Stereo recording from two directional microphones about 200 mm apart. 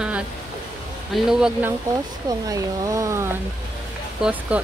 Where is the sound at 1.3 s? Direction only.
5° right (ahead or behind).